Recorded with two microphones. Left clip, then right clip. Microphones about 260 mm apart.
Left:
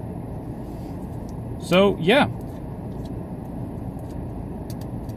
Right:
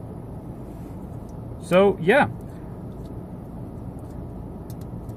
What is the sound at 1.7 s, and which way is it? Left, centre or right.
Speech, right.